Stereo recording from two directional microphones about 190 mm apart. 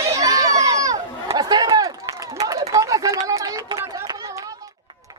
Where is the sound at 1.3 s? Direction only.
20° right (ahead or behind).